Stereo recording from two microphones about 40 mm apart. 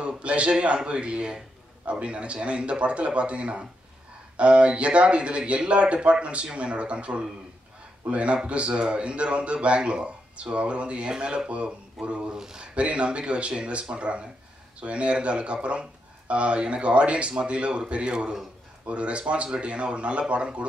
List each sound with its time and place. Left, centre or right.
0.0 s a man's voice: right
12.0 s speech: centre
12.4 s speech: centre
12.7 s a man's voice: right